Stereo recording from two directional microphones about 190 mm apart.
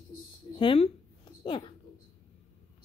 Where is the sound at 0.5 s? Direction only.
30° left (ahead or behind).